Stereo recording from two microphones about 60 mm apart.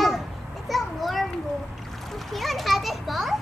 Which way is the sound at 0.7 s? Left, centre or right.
Centre.